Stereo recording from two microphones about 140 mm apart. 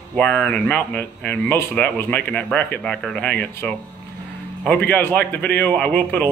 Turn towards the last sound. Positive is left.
turn(degrees=10)  # may be behind; listen again after turning